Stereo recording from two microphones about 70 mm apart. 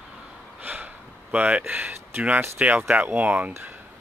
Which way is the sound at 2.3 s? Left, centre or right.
Right.